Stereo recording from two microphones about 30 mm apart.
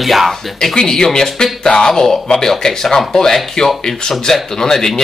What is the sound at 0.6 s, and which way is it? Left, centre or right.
Speech, centre.